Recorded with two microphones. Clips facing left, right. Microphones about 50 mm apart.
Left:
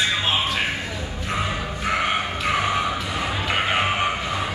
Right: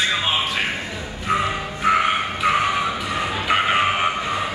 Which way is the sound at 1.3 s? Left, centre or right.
Centre.